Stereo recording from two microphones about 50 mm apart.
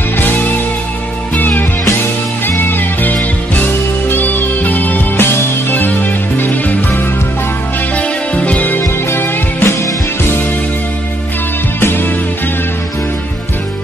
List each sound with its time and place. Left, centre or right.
1.3 s music: left
5.2 s music: left
9.1 s music: left
11.8 s music: left